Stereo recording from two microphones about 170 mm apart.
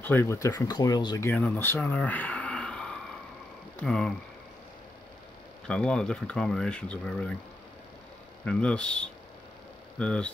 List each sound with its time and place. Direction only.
0.0 s speech: 15° left (ahead or behind)
1.2 s speech: 10° left (ahead or behind)
5.7 s speech: 5° left (ahead or behind)
8.5 s speech: 5° left (ahead or behind)